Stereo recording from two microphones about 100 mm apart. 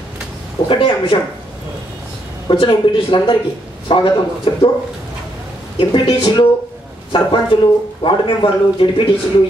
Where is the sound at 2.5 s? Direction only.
60° left (ahead or behind).